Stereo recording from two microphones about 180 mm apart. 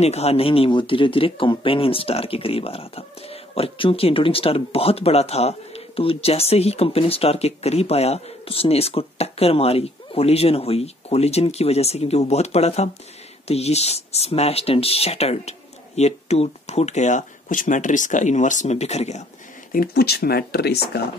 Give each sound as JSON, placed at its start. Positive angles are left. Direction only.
{"t": 0.0, "sound": "speech", "side_deg": 35}
{"t": 19.7, "sound": "speech", "side_deg": 55}